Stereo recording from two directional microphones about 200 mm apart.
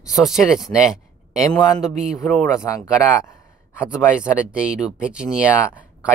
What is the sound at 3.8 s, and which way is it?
Speech, 5° right (ahead or behind).